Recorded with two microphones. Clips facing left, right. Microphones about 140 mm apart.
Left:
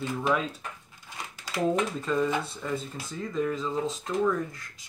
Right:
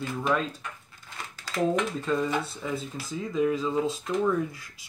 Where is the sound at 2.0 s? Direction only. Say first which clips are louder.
Even; centre (ahead or behind).